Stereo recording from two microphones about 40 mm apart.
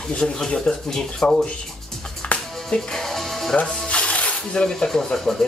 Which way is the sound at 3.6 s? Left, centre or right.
Left.